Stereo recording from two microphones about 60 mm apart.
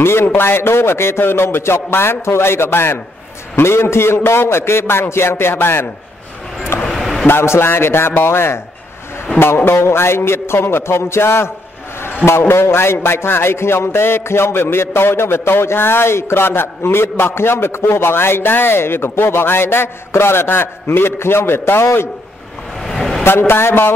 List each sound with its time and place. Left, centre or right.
0.0 s a man's voice: left
7.0 s a sound: centre
7.2 s a man's voice: left
9.7 s a man's voice: left
22.8 s a sound: centre
23.2 s a man's voice: left